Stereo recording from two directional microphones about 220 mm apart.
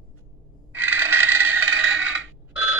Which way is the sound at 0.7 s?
10° right (ahead or behind).